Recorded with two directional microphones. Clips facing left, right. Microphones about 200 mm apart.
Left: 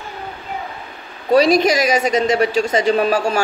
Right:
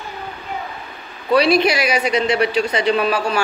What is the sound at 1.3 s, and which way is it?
A woman's voice, 45° left (ahead or behind).